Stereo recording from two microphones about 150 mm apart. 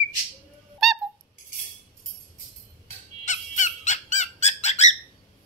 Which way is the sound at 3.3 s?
55° left (ahead or behind).